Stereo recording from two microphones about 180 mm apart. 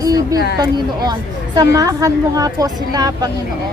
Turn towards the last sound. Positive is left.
turn(degrees=-20)  # may be behind; listen again after turning